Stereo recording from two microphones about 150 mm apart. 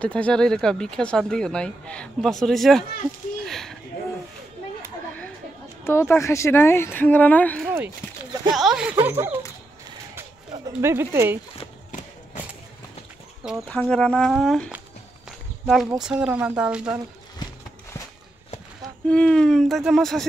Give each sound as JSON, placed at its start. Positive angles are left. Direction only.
{"t": 0.0, "sound": "speech", "side_deg": 10}
{"t": 5.9, "sound": "a woman's voice", "side_deg": 15}
{"t": 8.5, "sound": "speech", "side_deg": -5}
{"t": 9.0, "sound": "speech", "side_deg": -15}
{"t": 10.8, "sound": "speech", "side_deg": -15}
{"t": 13.7, "sound": "speech", "side_deg": 5}
{"t": 15.2, "sound": "walk", "side_deg": 0}
{"t": 16.0, "sound": "speech", "side_deg": -5}
{"t": 19.0, "sound": "speech", "side_deg": 5}